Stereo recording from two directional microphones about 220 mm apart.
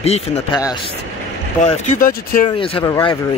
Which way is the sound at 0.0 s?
30° left (ahead or behind).